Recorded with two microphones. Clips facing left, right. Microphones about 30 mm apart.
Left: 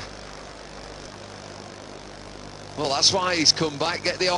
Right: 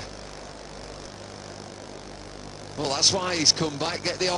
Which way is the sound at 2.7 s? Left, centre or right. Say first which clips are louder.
Left 2 dB; centre.